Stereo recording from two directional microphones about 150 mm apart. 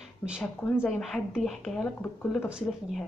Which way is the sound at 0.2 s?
15° left (ahead or behind).